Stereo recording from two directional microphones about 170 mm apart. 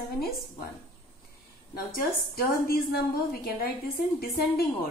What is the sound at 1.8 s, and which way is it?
A woman's voice, 60° left (ahead or behind).